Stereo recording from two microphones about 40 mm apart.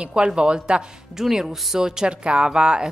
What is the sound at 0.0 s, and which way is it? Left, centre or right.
A woman's voice, right.